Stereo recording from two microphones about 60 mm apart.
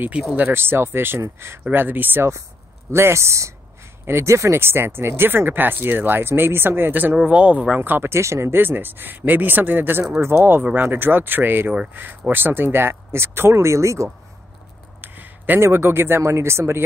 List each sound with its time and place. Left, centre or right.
0.5 s speech: right
2.9 s speech: right
7.2 s speech: right
7.7 s speech: right
8.1 s speech: right
8.5 s speech: right
15.0 s a sound: right
15.6 s speech: right